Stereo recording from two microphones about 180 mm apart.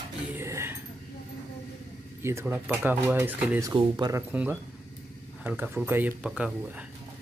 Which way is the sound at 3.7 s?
25° right (ahead or behind).